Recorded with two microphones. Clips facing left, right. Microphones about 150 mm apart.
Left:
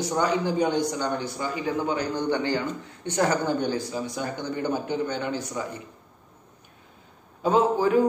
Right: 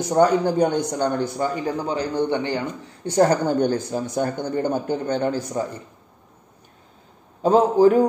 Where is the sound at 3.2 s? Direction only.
40° right (ahead or behind).